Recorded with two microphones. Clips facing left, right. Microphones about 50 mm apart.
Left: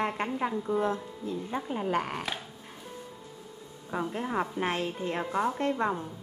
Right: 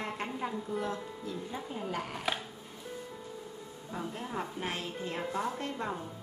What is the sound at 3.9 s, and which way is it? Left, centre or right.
Speech, left.